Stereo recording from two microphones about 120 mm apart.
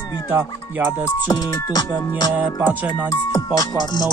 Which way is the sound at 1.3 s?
35° left (ahead or behind).